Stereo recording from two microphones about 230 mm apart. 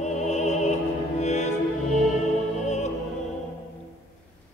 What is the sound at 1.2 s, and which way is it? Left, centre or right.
Music, left.